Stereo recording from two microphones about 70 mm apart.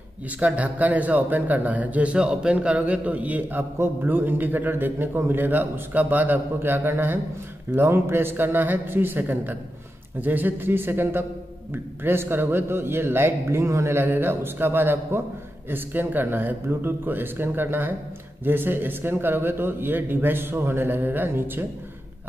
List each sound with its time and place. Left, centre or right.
0.4 s a man's voice: right